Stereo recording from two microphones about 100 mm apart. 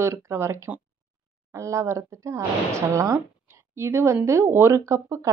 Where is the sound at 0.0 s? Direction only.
30° right (ahead or behind).